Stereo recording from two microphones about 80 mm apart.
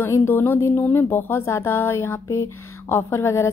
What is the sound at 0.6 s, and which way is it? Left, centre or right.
Speech, left.